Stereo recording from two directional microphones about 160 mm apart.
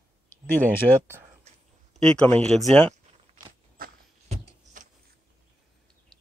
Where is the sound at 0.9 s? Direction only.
25° right (ahead or behind).